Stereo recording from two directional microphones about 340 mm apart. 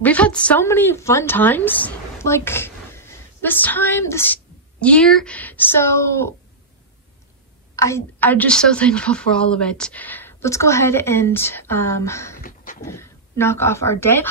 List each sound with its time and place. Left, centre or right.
0.0 s a woman's voice: centre
7.7 s a woman's voice: centre
12.4 s beatboxing: left
12.8 s speech: centre